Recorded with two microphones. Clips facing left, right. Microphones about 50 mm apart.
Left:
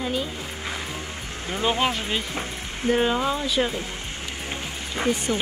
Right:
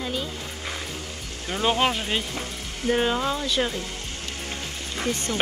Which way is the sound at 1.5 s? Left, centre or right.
Centre.